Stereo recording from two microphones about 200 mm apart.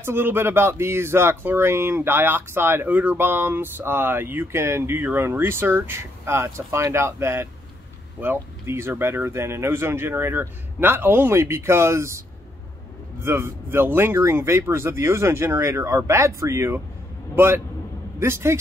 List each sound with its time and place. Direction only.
0.0 s speech: 10° right (ahead or behind)
13.2 s speech: 10° right (ahead or behind)